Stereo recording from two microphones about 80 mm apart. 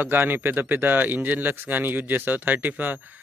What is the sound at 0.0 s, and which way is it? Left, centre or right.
A man's voice, right.